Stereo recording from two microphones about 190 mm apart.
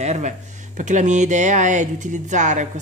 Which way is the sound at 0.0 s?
35° right (ahead or behind).